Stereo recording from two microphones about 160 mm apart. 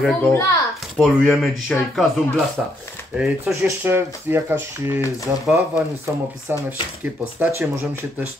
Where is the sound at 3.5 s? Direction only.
15° right (ahead or behind).